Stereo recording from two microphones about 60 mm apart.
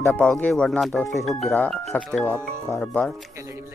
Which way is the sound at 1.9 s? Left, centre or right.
Left.